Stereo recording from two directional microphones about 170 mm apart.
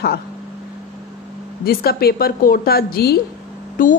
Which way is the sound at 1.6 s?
65° left (ahead or behind).